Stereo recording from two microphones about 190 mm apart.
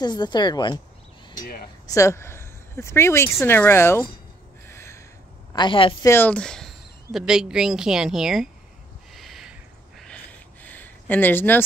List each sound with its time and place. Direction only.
0.0 s a woman's voice: 20° left (ahead or behind)
1.4 s speech: 50° left (ahead or behind)
1.9 s speech: 15° left (ahead or behind)
4.6 s a sound: 15° left (ahead or behind)
5.5 s a woman's voice: 25° left (ahead or behind)
6.0 s speech: 10° left (ahead or behind)
9.1 s a sound: centre (ahead or behind)